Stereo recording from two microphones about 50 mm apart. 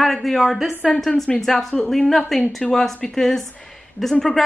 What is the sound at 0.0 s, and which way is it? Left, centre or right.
A woman's voice, centre.